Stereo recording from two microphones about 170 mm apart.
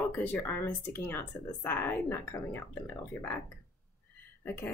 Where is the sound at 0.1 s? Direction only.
10° left (ahead or behind).